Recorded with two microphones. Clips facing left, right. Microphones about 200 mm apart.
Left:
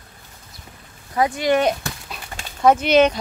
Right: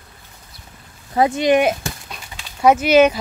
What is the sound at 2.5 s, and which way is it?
Speech, 5° right (ahead or behind).